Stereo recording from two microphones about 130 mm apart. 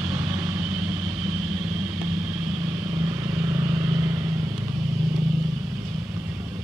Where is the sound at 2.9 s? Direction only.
25° right (ahead or behind).